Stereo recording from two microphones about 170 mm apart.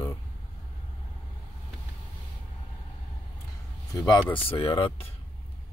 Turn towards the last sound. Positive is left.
turn(degrees=35)  # may be behind; listen again after turning